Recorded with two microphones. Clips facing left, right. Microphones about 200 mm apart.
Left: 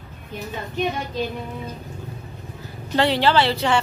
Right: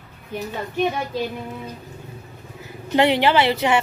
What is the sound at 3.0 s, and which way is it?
Speech, 20° right (ahead or behind).